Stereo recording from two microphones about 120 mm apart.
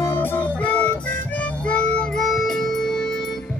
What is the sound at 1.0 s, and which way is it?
Harmonica, 10° left (ahead or behind).